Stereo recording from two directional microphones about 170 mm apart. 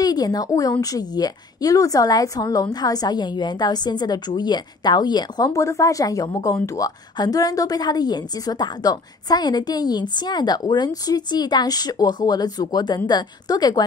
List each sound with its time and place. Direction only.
0.0 s a woman's voice: 20° left (ahead or behind)